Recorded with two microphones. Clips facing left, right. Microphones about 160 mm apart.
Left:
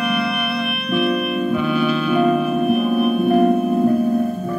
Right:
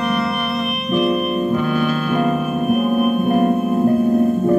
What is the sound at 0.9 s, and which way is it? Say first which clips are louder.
Music: right 2 dB; 40° right (ahead or behind).